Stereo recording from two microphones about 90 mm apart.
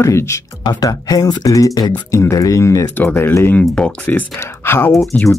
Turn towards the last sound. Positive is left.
turn(degrees=15)  # may be behind; listen again after turning